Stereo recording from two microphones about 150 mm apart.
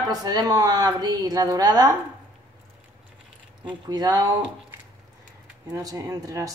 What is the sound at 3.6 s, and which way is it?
Speech, 30° right (ahead or behind).